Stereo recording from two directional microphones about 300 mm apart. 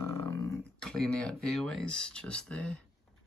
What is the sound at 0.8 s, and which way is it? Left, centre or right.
Speech, centre.